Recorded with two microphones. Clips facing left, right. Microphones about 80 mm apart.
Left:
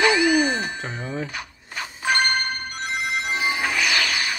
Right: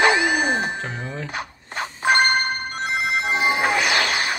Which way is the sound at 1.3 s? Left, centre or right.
Right.